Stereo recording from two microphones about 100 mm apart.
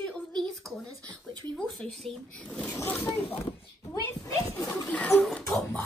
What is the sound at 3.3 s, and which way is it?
Speech, 75° left (ahead or behind).